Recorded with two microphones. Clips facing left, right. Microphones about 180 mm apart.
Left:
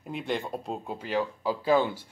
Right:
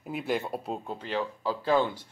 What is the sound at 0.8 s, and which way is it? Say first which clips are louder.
Speech: left 2 dB; 10° left (ahead or behind).